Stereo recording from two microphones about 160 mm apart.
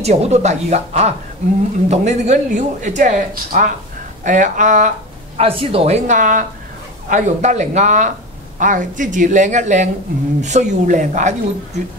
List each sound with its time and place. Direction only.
0.0 s speech: 40° right (ahead or behind)
5.4 s a woman's voice: 35° right (ahead or behind)
6.0 s speech: 55° right (ahead or behind)